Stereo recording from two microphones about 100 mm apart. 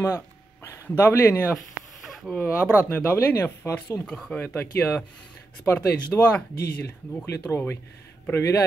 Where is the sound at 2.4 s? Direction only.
25° left (ahead or behind).